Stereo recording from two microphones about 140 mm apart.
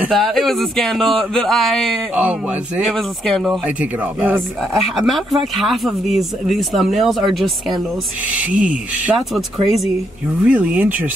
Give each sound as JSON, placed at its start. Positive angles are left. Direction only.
{"t": 0.1, "sound": "speech", "side_deg": 0}
{"t": 2.1, "sound": "speech", "side_deg": -10}
{"t": 2.9, "sound": "speech", "side_deg": 5}
{"t": 3.8, "sound": "speech", "side_deg": -10}
{"t": 4.6, "sound": "speech", "side_deg": 0}
{"t": 10.4, "sound": "speech", "side_deg": -10}